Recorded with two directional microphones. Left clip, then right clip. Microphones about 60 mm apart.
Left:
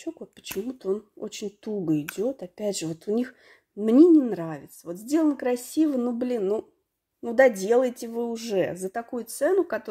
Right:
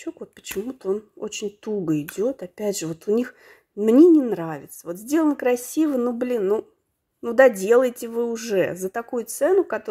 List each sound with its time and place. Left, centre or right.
0.2 s a woman's voice: right
3.8 s a woman's voice: right
7.2 s a woman's voice: right
8.8 s speech: right
9.6 s speech: centre